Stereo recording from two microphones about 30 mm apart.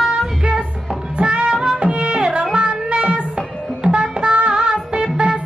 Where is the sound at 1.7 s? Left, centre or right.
Right.